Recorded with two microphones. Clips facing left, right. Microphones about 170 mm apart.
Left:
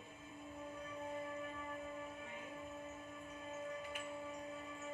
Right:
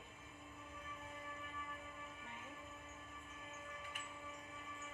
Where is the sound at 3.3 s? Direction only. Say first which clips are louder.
Left 10 dB; 35° left (ahead or behind).